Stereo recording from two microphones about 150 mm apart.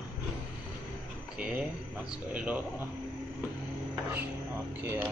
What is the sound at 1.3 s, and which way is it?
Speech, 10° right (ahead or behind).